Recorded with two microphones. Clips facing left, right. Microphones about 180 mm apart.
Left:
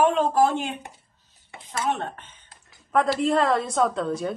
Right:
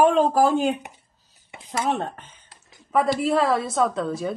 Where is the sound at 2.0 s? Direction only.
40° right (ahead or behind).